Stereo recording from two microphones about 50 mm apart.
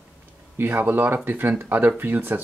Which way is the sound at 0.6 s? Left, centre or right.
Right.